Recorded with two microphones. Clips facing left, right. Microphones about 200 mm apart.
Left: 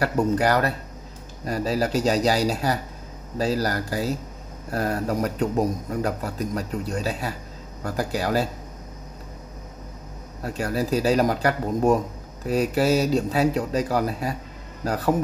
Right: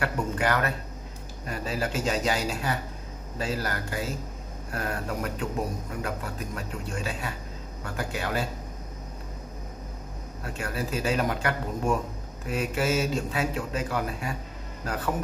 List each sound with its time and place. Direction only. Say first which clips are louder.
0.0 s speech: left 7 dB; 35° left (ahead or behind)
10.4 s speech: left 7 dB; 40° left (ahead or behind)